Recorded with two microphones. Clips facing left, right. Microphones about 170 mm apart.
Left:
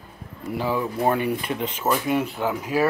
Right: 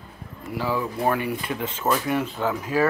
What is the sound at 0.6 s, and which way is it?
Speech, 20° left (ahead or behind).